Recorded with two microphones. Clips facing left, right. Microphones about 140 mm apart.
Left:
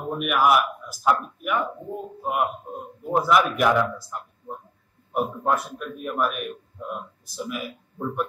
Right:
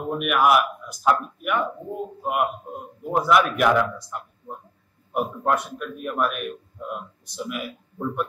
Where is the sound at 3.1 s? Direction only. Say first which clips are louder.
Right 1 dB; centre (ahead or behind).